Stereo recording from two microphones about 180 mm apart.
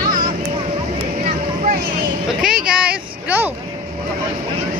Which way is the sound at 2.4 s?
5° right (ahead or behind).